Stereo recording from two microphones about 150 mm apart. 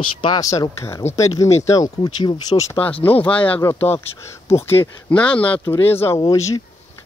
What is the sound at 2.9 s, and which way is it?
Speech, 10° left (ahead or behind).